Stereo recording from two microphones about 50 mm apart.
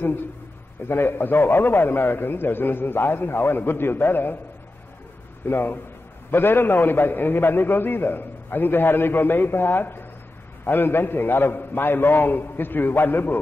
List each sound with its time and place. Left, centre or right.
0.8 s a man's voice: left
5.5 s a man's voice: left